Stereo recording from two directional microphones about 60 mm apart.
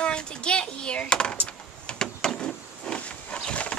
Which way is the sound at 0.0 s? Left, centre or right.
Centre.